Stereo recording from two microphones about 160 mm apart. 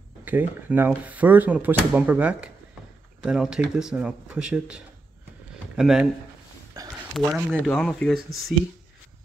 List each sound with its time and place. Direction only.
0.2 s speech: 10° right (ahead or behind)
6.8 s a sound: 20° right (ahead or behind)
7.2 s speech: centre (ahead or behind)